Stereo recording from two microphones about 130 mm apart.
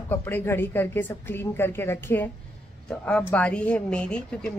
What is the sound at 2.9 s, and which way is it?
A woman's voice, 5° left (ahead or behind).